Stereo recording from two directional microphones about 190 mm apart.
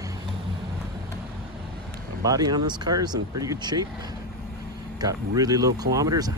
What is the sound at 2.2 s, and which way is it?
Speech, 20° right (ahead or behind).